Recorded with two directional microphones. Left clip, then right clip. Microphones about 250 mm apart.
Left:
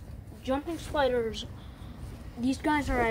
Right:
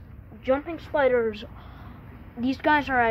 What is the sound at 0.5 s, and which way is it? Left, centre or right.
Speech, centre.